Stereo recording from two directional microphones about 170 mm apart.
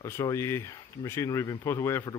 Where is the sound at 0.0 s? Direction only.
15° left (ahead or behind).